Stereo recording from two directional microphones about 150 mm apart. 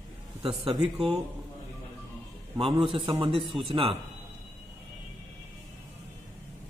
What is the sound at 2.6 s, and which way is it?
A man's voice, 40° right (ahead or behind).